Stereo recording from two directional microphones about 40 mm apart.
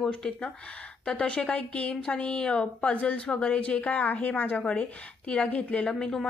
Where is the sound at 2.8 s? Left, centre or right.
Left.